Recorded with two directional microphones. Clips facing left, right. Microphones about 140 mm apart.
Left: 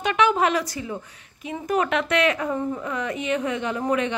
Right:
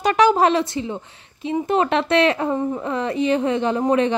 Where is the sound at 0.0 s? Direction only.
35° right (ahead or behind).